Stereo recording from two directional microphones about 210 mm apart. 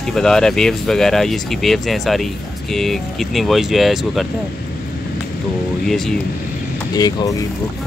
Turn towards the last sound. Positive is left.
turn(degrees=20)  # may be behind; listen again after turning